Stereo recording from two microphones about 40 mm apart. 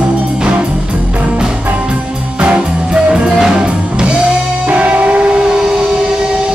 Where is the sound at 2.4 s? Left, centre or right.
Right.